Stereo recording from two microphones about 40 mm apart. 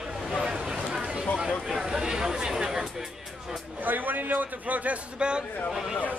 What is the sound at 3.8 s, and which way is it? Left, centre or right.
A man's voice, right.